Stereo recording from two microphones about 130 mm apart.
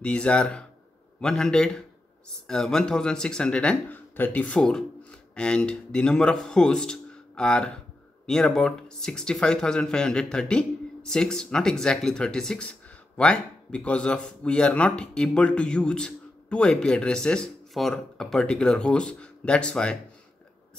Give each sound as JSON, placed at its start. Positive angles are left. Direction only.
{"t": 0.0, "sound": "speech", "side_deg": 10}